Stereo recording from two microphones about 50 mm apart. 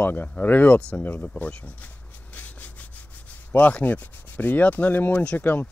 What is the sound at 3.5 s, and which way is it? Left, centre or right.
Sanding, left.